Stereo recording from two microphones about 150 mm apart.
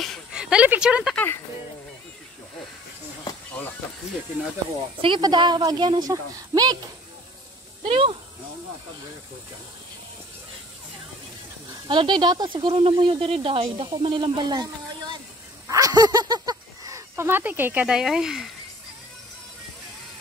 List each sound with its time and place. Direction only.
0.0 s a sound: centre (ahead or behind)
1.1 s speech: 15° left (ahead or behind)
5.0 s a woman's voice: 30° right (ahead or behind)
7.8 s speech: 35° right (ahead or behind)
11.9 s speech: 30° right (ahead or behind); by 18.5 s 5° right (ahead or behind)